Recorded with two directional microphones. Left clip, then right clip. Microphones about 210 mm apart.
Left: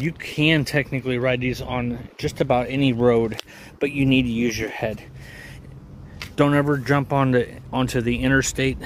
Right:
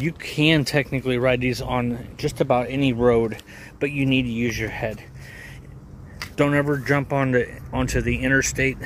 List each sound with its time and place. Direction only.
0.0 s speech: 10° right (ahead or behind); by 3.9 s 10° left (ahead or behind)
3.9 s speech: 25° left (ahead or behind)
6.3 s speech: 20° left (ahead or behind)